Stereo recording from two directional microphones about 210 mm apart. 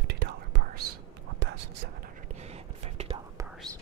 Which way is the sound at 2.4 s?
30° right (ahead or behind).